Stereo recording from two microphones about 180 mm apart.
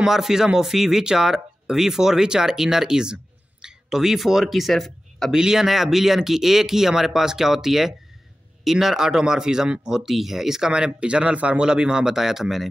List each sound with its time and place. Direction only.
0.0 s speech: 5° right (ahead or behind)